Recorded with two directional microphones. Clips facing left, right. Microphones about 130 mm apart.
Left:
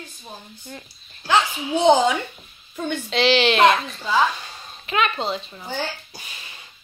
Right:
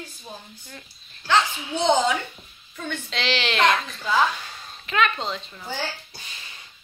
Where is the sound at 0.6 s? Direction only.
25° left (ahead or behind).